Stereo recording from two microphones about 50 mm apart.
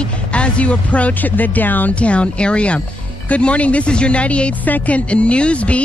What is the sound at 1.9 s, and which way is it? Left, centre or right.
Speech, left.